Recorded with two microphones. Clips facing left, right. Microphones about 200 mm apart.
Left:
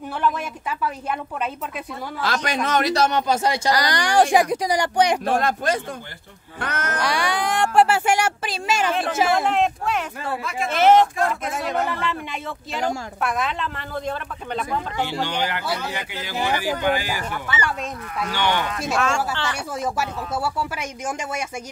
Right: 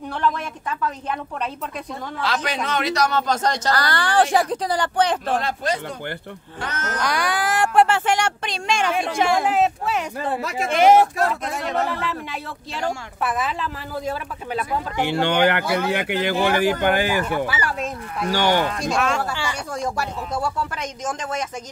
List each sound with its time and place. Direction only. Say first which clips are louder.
0.2 s speech: even; 10° left (ahead or behind)
2.2 s a man's voice: left 1 dB; 45° left (ahead or behind)
3.1 s speech: left 1 dB; 10° left (ahead or behind)
5.4 s a man's voice: left 2 dB; 50° left (ahead or behind)
7.0 s speech: right 1 dB; centre (ahead or behind)
11.4 s speech: even; centre (ahead or behind)
15.0 s speech: right 7 dB; 60° right (ahead or behind)
17.5 s speech: right 1 dB; centre (ahead or behind)
18.3 s speech: right 4 dB; 40° right (ahead or behind)
18.8 s speech: right 1 dB; centre (ahead or behind)
19.7 s speech: even; 5° left (ahead or behind)